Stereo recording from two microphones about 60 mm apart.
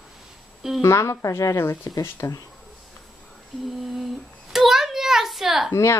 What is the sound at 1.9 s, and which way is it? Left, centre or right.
Speech, left.